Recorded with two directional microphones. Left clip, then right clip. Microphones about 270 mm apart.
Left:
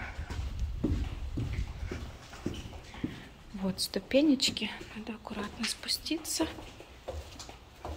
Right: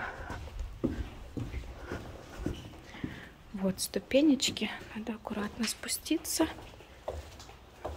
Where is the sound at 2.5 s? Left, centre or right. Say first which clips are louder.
Even; right.